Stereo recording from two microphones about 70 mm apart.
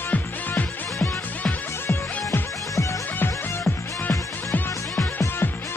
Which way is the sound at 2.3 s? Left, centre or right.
Left.